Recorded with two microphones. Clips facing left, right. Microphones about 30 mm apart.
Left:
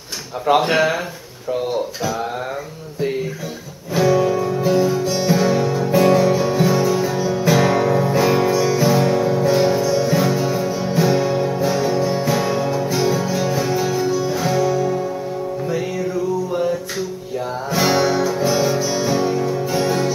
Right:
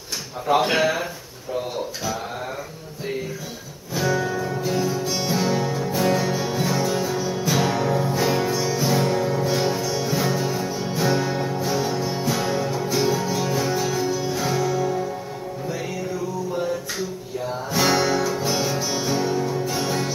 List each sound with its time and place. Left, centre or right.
0.6 s speech: centre
4.3 s music: centre
5.9 s music: centre
17.6 s music: centre
19.1 s music: centre